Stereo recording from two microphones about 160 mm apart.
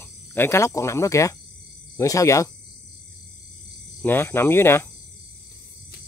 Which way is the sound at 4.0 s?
15° left (ahead or behind).